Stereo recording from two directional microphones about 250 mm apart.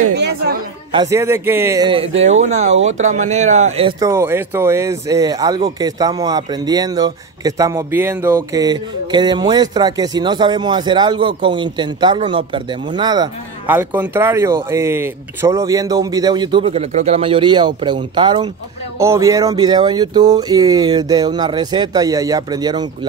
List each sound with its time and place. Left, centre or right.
0.1 s speech: right
0.9 s a man's voice: centre
4.0 s speech: centre